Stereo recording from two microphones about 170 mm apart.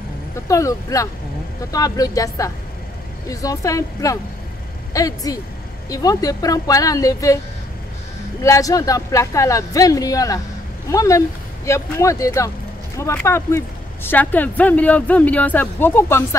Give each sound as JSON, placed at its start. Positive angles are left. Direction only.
{"t": 0.5, "sound": "speech", "side_deg": 20}
{"t": 8.4, "sound": "speech", "side_deg": 20}